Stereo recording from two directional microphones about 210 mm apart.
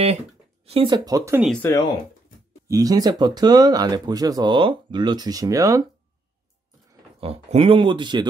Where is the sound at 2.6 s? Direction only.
15° right (ahead or behind).